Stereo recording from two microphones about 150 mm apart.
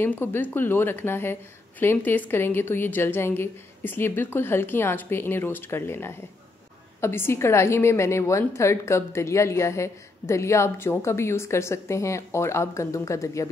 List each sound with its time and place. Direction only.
0.0 s a woman's voice: 15° left (ahead or behind)